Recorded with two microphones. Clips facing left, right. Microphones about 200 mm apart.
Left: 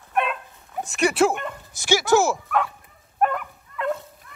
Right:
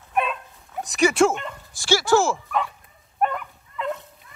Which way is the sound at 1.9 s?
15° left (ahead or behind).